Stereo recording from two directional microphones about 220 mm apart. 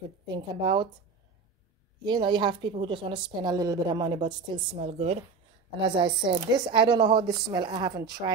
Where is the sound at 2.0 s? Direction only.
20° right (ahead or behind).